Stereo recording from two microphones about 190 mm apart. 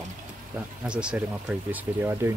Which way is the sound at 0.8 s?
5° right (ahead or behind).